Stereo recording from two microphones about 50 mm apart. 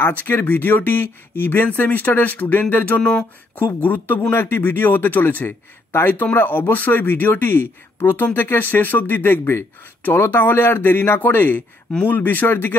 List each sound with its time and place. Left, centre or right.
0.2 s speech: left
3.0 s speech: centre
3.5 s speech: left